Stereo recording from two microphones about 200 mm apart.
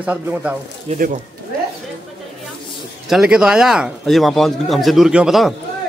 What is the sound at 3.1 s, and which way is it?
Speech, 5° right (ahead or behind).